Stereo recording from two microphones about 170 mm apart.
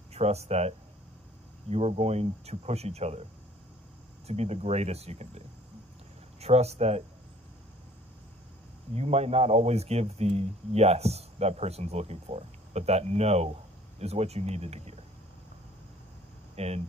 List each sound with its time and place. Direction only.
0.1 s speech: 40° right (ahead or behind)
4.3 s speech: 40° right (ahead or behind)
6.4 s speech: 40° right (ahead or behind)
8.9 s speech: 40° right (ahead or behind)
16.5 s speech: 40° right (ahead or behind)